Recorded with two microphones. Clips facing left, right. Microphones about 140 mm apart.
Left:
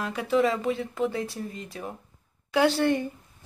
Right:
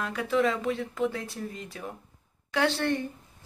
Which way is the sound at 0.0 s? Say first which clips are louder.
Left 2 dB; 5° left (ahead or behind).